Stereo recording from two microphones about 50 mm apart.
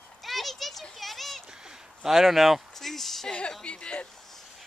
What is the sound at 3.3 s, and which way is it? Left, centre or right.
Speech, left.